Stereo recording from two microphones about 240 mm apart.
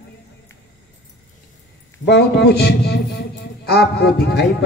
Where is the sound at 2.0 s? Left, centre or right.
Left.